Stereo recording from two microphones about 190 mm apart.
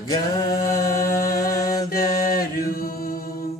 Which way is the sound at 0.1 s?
20° left (ahead or behind).